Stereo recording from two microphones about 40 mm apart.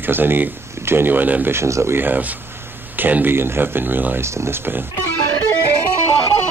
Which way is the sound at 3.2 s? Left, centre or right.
Right.